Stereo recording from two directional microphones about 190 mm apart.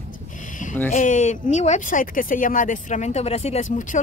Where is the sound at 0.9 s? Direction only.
40° left (ahead or behind).